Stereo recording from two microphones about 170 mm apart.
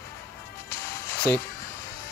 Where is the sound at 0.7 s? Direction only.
15° left (ahead or behind).